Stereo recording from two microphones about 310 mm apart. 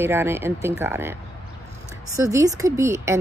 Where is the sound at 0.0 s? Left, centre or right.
Centre.